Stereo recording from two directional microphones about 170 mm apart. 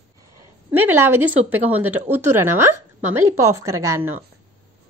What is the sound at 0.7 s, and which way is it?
A woman's voice, 10° right (ahead or behind).